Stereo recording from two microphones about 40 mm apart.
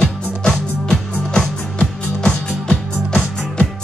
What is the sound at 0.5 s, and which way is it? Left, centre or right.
Music, centre.